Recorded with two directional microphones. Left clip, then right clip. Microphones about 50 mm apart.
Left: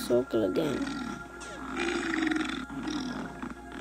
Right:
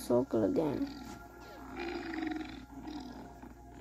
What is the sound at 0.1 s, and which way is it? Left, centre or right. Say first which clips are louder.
Speech: left 3 dB; left.